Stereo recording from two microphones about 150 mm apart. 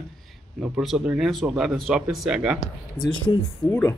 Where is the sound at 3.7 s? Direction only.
10° left (ahead or behind).